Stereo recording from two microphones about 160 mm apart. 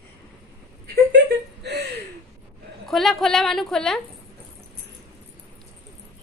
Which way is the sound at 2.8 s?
Centre (ahead or behind).